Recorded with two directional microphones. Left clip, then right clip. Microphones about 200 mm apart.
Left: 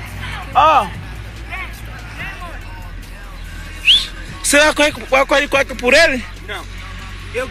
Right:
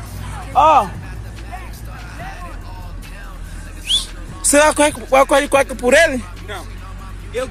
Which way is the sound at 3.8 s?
15° right (ahead or behind).